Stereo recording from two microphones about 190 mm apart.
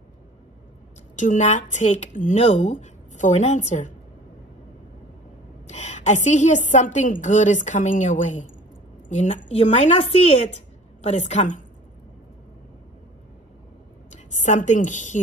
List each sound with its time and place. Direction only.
1.1 s a woman's voice: 40° left (ahead or behind)
5.7 s a woman's voice: 35° left (ahead or behind)
14.1 s a woman's voice: 40° left (ahead or behind)